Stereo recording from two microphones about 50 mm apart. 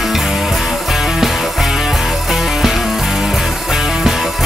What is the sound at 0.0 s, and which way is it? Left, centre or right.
Music, centre.